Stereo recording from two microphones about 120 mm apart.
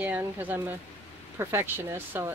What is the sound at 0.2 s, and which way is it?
Speech, 15° right (ahead or behind).